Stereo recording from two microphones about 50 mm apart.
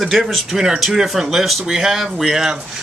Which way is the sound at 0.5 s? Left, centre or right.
Centre.